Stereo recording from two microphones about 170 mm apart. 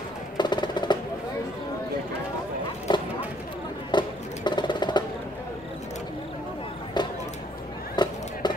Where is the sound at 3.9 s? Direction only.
25° left (ahead or behind).